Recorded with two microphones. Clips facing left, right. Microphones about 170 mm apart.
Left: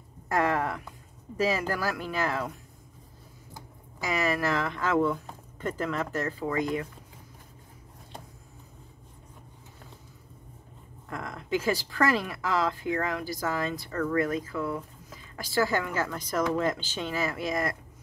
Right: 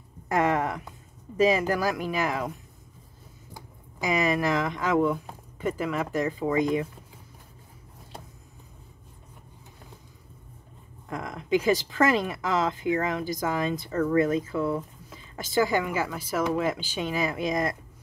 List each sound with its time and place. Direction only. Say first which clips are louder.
0.3 s speech: right 2 dB; 20° right (ahead or behind)
3.5 s speech: right 1 dB; 15° right (ahead or behind)
11.1 s speech: right 4 dB; 20° right (ahead or behind)